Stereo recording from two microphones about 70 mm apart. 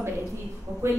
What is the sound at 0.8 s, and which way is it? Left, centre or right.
Speech, right.